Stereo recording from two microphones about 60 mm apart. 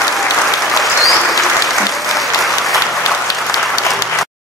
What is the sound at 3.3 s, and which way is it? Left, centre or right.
Applause, left.